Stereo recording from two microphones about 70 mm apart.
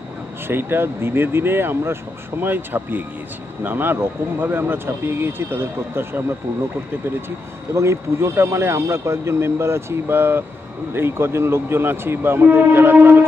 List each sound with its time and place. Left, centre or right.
0.5 s speech: right